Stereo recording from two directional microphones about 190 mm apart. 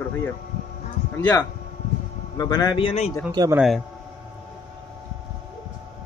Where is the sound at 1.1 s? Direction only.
15° left (ahead or behind); by 3.1 s 30° left (ahead or behind).